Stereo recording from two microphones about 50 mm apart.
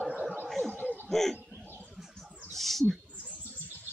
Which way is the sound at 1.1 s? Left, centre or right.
Centre.